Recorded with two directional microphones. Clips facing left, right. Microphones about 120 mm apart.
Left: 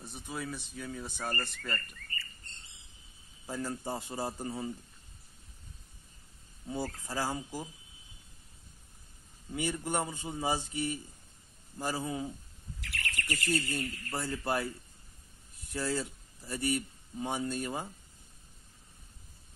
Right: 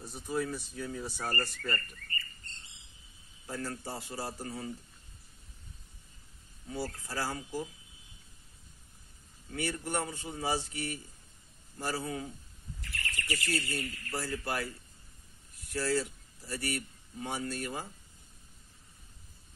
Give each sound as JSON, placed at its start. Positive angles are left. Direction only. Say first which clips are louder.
{"t": 0.1, "sound": "speech", "louder": "right 6 dB", "side_deg": 0}
{"t": 3.4, "sound": "a man's voice", "louder": "left 2 dB", "side_deg": 15}
{"t": 6.7, "sound": "speech", "louder": "left 1 dB", "side_deg": 15}
{"t": 9.5, "sound": "a man's voice", "louder": "left 1 dB", "side_deg": 15}
{"t": 12.8, "sound": "bird", "louder": "left 2 dB", "side_deg": 75}
{"t": 13.1, "sound": "speech", "louder": "left 2 dB", "side_deg": 45}
{"t": 13.7, "sound": "a man's voice", "louder": "left 1 dB", "side_deg": 25}
{"t": 15.7, "sound": "speech", "louder": "right 2 dB", "side_deg": 20}